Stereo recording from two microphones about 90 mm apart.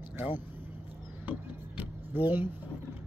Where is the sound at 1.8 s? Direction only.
20° right (ahead or behind).